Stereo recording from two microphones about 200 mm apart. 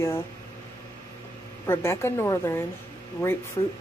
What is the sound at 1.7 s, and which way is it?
Speech, 10° left (ahead or behind).